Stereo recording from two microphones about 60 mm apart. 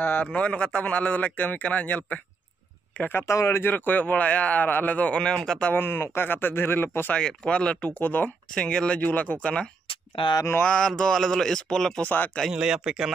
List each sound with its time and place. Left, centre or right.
0.0 s a man's voice: left
0.3 s speech: centre
3.0 s speech: left
3.3 s speech: left
3.6 s speech: left; by 5.7 s centre
5.7 s speech: left
7.2 s speech: centre
8.5 s speech: centre
12.0 s speech: left
12.4 s speech: centre